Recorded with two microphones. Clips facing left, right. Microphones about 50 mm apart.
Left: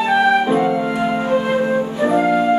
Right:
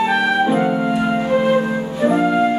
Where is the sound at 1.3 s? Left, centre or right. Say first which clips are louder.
Right 4 dB; centre.